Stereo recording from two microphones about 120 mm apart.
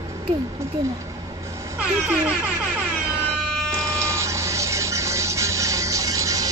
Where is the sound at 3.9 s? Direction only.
25° right (ahead or behind).